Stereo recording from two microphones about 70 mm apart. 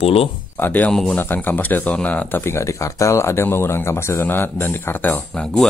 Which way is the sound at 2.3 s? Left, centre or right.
Left.